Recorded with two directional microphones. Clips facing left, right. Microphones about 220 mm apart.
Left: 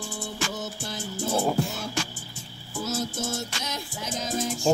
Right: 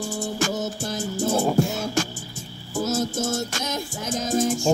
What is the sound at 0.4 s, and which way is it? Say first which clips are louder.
Music: right 7 dB; 45° right (ahead or behind).